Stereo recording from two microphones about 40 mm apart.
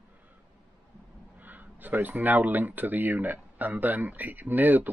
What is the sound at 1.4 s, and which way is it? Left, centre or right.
Speech, right.